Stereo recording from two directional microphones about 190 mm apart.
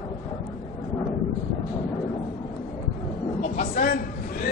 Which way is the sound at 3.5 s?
45° left (ahead or behind).